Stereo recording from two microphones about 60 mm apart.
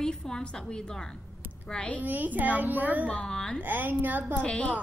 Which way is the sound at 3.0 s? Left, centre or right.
Centre.